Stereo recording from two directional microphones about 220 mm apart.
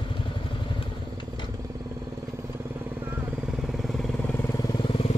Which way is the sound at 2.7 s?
10° right (ahead or behind).